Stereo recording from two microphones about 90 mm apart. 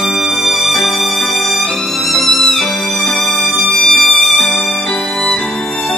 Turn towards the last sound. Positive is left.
turn(degrees=0)  # may be behind; listen again after turning